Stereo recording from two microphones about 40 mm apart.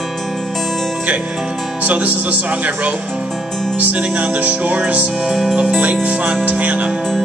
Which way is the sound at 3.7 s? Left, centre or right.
Right.